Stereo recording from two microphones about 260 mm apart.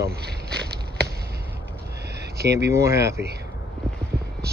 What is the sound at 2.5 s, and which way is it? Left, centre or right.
Speech, centre.